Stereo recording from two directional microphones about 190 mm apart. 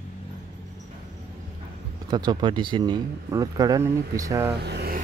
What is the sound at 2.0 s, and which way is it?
Speech, 25° right (ahead or behind).